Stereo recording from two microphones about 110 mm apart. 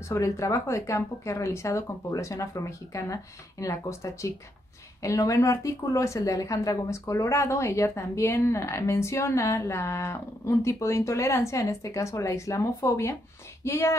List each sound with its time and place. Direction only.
0.1 s a woman's voice: 25° left (ahead or behind)